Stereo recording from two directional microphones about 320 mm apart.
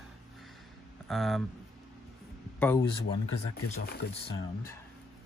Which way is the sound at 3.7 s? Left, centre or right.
Left.